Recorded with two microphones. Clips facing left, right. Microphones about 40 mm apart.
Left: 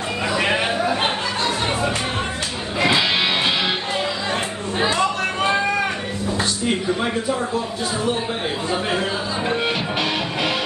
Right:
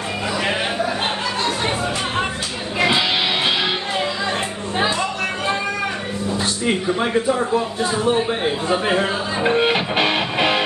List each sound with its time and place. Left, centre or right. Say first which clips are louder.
2.8 s music: even; centre
8.6 s speech: right 3 dB; right